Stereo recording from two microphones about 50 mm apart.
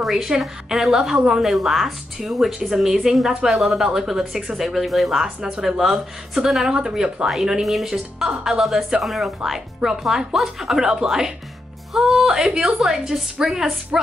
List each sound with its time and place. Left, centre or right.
0.0 s a woman's voice: centre
5.2 s a woman's voice: centre